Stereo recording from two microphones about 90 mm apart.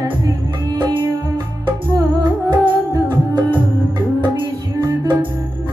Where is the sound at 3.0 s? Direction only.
55° right (ahead or behind).